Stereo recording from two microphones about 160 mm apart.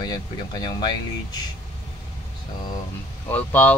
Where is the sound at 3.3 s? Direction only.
10° left (ahead or behind).